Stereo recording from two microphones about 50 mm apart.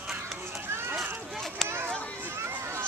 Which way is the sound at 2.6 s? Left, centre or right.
Right.